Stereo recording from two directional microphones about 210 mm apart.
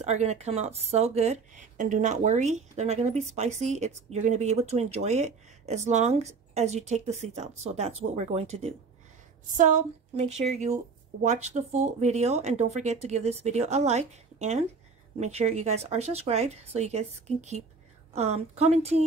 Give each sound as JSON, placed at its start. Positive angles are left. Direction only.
{"t": 0.0, "sound": "speech", "side_deg": -30}